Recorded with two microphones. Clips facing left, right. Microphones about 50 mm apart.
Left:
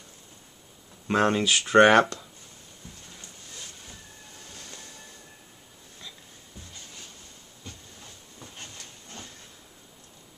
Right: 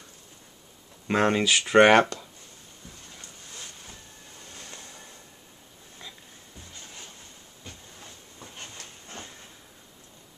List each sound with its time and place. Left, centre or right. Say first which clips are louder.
1.0 s speech: even; centre
4.6 s train: right 1 dB; right
7.6 s a sound: even; centre